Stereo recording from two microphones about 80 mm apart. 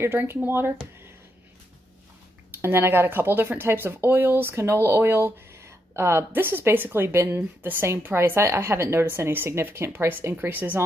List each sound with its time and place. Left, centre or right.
0.0 s speech: right
2.6 s speech: right